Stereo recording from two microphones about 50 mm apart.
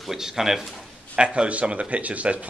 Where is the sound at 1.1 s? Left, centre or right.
Centre.